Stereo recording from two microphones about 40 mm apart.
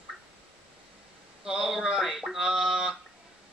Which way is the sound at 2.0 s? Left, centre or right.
Centre.